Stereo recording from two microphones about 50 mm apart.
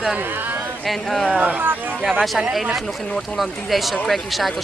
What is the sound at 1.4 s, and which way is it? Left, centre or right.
Speech, right.